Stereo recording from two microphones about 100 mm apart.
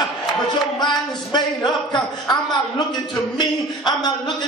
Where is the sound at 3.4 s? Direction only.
45° left (ahead or behind).